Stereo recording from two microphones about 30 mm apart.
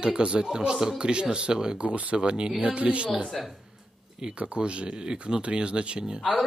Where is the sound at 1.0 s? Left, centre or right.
Right.